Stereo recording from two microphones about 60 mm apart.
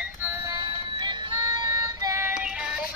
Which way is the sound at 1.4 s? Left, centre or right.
Right.